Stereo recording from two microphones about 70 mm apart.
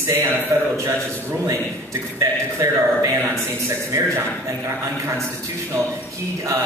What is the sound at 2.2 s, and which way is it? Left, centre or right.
Speech, right.